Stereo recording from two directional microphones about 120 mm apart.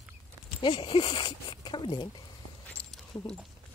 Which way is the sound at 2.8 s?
10° left (ahead or behind).